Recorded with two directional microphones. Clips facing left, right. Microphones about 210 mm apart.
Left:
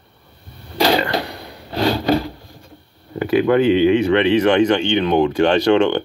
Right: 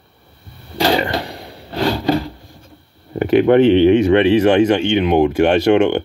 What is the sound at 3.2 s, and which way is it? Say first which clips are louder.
Speech: right 4 dB; 25° right (ahead or behind).